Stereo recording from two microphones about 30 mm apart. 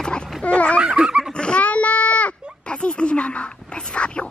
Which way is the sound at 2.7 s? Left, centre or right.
Left.